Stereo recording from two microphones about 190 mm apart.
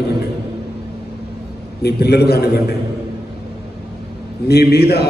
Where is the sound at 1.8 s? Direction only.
55° left (ahead or behind).